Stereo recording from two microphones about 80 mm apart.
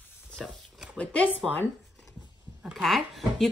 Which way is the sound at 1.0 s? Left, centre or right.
Centre.